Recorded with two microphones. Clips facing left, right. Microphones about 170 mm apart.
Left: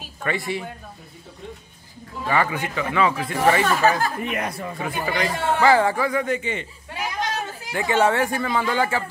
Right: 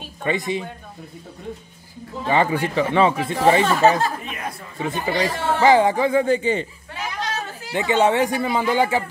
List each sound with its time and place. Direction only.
0.2 s speech: 20° right (ahead or behind)
2.2 s speech: 25° right (ahead or behind)
4.2 s speech: 65° left (ahead or behind)
4.8 s speech: 25° right (ahead or behind)
6.9 s children playing: 20° left (ahead or behind)
7.7 s speech: 20° right (ahead or behind)